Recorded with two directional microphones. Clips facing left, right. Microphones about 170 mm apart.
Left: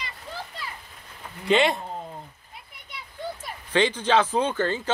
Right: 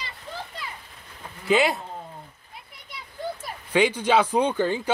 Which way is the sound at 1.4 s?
5° right (ahead or behind).